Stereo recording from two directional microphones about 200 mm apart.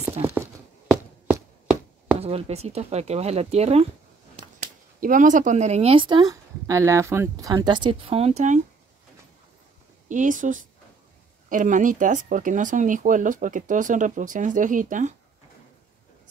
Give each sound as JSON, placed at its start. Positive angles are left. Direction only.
{"t": 0.2, "sound": "a sound", "side_deg": -10}
{"t": 2.1, "sound": "speech", "side_deg": -30}
{"t": 5.0, "sound": "speech", "side_deg": -40}
{"t": 10.0, "sound": "speech", "side_deg": -40}